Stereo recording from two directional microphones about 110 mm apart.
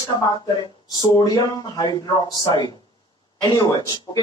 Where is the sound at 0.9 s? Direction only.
40° left (ahead or behind).